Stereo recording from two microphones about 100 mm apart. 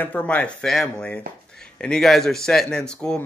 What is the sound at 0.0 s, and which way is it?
Speech, 15° left (ahead or behind).